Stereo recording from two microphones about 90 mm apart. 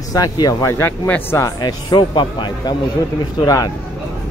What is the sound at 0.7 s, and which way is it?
Speech, 25° left (ahead or behind).